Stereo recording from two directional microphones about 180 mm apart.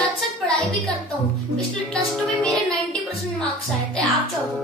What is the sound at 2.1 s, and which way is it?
Music, 5° left (ahead or behind).